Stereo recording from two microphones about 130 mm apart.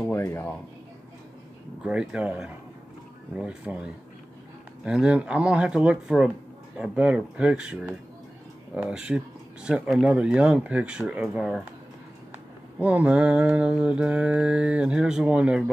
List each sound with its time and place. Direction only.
0.0 s speech: 20° left (ahead or behind)
1.8 s mantra: 10° right (ahead or behind)
12.7 s mantra: 10° right (ahead or behind)